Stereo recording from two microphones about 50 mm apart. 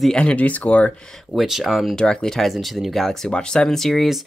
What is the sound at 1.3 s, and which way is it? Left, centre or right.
Speech, centre.